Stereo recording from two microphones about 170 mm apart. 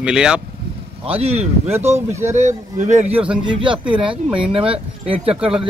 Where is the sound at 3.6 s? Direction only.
30° right (ahead or behind).